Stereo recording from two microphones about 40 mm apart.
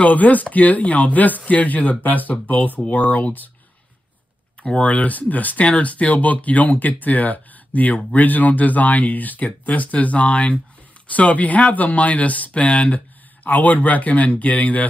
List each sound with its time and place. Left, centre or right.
0.0 s speech: left
4.6 s speech: left
4.9 s speech: left
13.4 s speech: left